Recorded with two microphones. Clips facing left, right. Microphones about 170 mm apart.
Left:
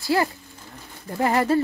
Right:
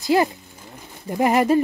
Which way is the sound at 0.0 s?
20° right (ahead or behind).